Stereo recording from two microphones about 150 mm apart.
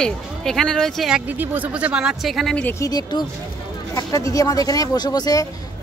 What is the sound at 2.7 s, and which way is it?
Speech, 25° left (ahead or behind).